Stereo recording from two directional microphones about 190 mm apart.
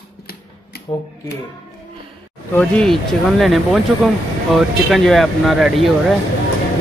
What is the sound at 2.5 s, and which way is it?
Speech, 5° left (ahead or behind).